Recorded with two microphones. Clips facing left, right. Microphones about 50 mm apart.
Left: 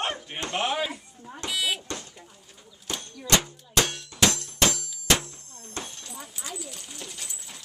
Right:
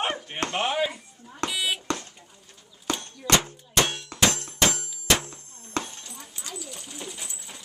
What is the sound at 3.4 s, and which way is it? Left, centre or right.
Music, right.